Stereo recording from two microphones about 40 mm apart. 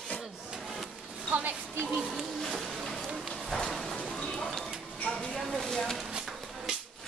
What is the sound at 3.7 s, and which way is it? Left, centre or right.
Clip-clop, centre.